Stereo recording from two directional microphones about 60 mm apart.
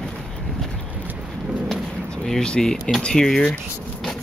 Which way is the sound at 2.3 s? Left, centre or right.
Centre.